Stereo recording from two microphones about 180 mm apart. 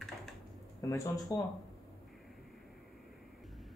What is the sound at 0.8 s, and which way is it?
Speech, 15° left (ahead or behind).